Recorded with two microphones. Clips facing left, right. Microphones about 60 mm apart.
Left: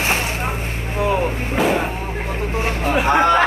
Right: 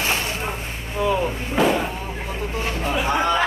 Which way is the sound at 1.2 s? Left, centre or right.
Centre.